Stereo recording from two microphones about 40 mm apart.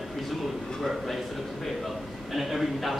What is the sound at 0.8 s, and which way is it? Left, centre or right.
Speech, centre.